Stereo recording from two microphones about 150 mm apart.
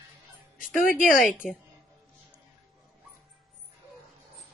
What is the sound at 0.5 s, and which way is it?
Speech, 65° left (ahead or behind).